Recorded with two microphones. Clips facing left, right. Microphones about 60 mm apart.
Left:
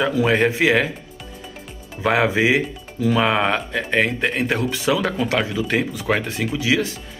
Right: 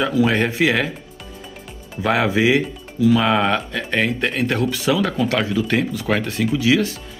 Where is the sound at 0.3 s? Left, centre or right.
Centre.